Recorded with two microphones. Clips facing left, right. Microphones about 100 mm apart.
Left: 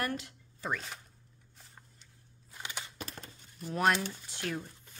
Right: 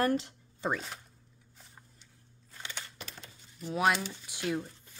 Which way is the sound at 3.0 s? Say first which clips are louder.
Left 3 dB; 45° left (ahead or behind).